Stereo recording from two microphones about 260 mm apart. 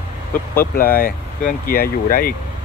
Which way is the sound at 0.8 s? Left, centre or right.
Left.